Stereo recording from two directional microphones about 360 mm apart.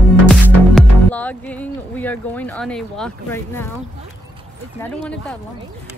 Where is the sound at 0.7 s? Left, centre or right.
Centre.